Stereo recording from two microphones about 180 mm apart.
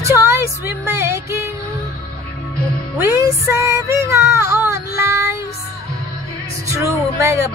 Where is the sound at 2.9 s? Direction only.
15° right (ahead or behind).